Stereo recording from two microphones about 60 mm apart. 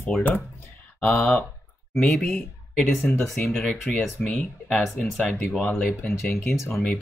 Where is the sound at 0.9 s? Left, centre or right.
Left.